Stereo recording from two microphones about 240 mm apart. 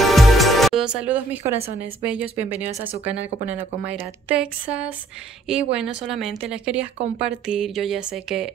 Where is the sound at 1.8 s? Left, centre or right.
Centre.